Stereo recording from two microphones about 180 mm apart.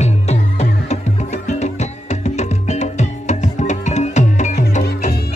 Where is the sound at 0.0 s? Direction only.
35° left (ahead or behind).